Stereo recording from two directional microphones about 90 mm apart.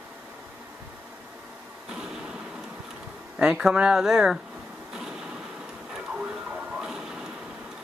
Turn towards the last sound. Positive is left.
turn(degrees=-5)  # may be behind; listen again after turning